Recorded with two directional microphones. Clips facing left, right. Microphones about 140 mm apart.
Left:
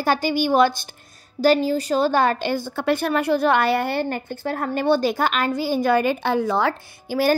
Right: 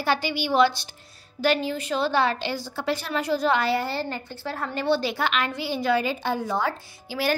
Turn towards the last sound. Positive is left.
turn(degrees=50)  # may be behind; listen again after turning